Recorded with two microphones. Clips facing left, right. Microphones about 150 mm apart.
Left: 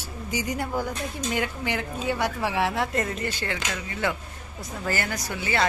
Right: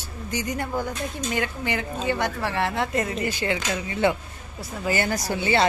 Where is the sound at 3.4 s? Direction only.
20° right (ahead or behind).